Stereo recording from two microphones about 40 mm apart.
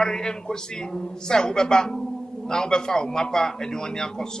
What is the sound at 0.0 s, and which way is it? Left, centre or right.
A man's voice, centre.